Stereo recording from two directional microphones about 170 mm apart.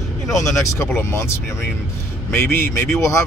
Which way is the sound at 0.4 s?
20° left (ahead or behind).